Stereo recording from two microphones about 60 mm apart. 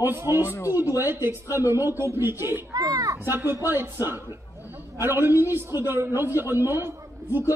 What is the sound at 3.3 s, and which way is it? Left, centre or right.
A man's voice, right.